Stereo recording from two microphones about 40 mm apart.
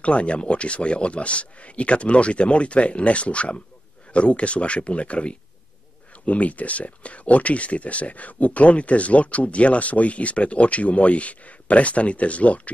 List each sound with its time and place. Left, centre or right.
0.0 s speech: left